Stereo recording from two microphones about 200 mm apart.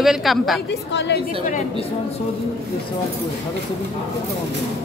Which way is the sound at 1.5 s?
35° left (ahead or behind).